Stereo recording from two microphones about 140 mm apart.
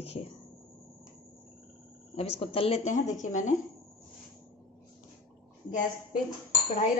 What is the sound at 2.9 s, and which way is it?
Speech, 60° left (ahead or behind).